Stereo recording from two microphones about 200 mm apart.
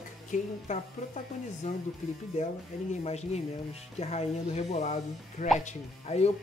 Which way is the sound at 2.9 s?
35° left (ahead or behind).